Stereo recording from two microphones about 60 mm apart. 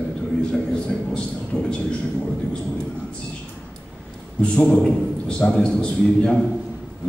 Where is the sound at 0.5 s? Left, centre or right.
Centre.